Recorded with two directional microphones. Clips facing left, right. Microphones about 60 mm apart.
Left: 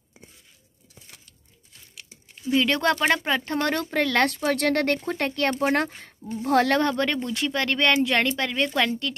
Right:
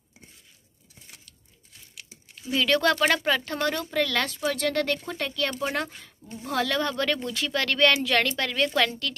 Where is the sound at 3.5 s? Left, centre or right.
Left.